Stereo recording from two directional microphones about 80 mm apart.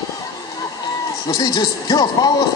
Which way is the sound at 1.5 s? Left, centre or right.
Left.